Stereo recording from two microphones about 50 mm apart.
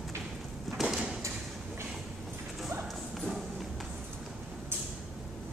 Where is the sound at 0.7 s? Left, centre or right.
Centre.